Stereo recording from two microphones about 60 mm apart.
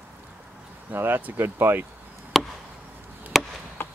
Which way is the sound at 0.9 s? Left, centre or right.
Right.